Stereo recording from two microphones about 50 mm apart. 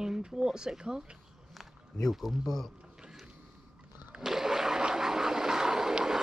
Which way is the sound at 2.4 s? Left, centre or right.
Centre.